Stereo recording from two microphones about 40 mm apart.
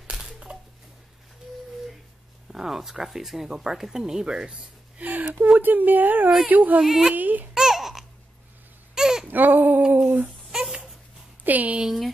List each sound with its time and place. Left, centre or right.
0.1 s a sound: right
2.5 s speech: centre
4.9 s a sound: right
5.6 s speech: right
6.8 s speech: centre
7.2 s speech: right
7.5 s babbling: centre
8.9 s baby cry: centre
9.3 s baby cry: right
9.8 s a sound: right
10.2 s babbling: centre
11.4 s a sound: right